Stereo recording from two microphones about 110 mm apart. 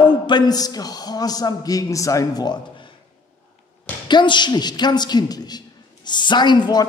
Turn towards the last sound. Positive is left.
turn(degrees=40)  # may be behind; listen again after turning